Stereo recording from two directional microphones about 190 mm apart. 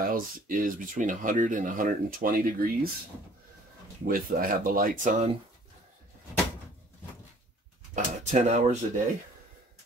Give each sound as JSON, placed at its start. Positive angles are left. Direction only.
{"t": 0.0, "sound": "speech", "side_deg": -45}
{"t": 4.0, "sound": "speech", "side_deg": -50}
{"t": 7.9, "sound": "speech", "side_deg": -40}